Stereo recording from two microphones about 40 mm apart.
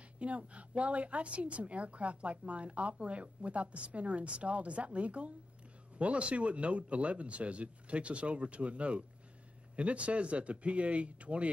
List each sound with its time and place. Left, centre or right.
0.2 s a woman's voice: right